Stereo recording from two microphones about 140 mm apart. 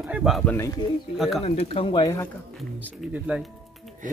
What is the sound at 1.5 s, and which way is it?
Speech, 50° left (ahead or behind).